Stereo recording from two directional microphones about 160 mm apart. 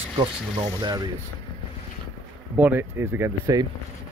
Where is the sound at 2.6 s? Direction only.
10° right (ahead or behind).